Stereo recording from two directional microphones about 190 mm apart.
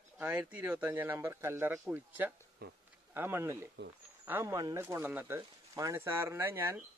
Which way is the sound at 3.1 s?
10° right (ahead or behind).